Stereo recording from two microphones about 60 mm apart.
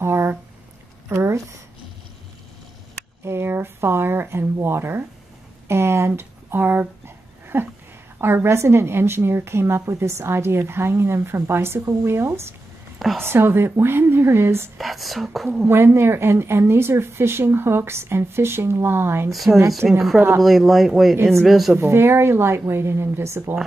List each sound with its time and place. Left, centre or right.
0.0 s a sound: right
1.0 s speech: right
3.3 s a woman's voice: right
14.8 s speech: centre
15.6 s a woman's voice: right
19.3 s speech: centre
21.7 s a woman's voice: right